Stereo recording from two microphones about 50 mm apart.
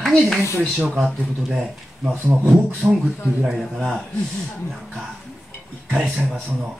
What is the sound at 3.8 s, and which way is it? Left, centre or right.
Speech, centre.